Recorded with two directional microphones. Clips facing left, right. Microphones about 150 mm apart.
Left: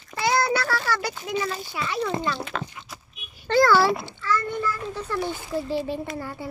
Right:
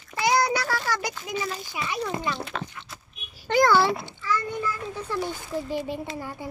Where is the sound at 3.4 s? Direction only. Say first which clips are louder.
Left 2 dB; 15° right (ahead or behind).